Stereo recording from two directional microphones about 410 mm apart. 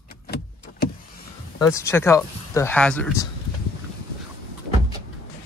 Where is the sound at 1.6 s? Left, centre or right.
Centre.